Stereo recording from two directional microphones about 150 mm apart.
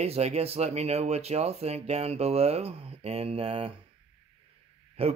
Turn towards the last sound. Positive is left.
turn(degrees=-45)  # may be behind; listen again after turning